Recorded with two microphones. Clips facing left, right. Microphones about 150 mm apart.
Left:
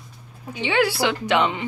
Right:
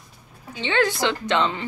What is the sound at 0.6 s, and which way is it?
A woman's voice, 10° left (ahead or behind).